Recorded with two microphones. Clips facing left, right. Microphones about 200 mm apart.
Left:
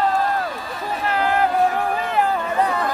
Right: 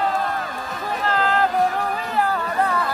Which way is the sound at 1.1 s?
15° left (ahead or behind).